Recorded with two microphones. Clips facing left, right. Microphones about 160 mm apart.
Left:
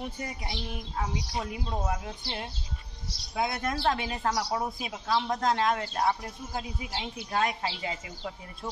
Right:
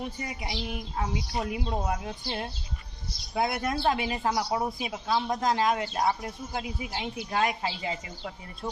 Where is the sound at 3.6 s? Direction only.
10° right (ahead or behind).